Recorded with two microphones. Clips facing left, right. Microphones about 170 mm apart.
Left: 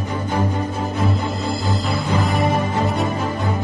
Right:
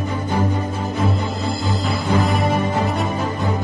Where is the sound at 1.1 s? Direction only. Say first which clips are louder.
Even; centre (ahead or behind).